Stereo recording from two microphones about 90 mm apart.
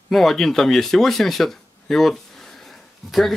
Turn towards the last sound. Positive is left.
turn(degrees=0)  # may be behind; listen again after turning